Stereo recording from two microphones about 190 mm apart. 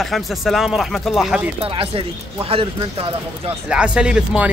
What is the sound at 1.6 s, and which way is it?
Speech, 30° right (ahead or behind).